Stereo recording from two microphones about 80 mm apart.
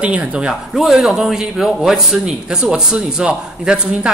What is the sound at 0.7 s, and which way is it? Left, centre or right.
A man's voice, centre.